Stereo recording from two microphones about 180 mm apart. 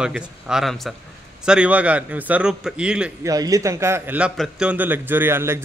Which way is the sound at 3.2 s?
20° right (ahead or behind).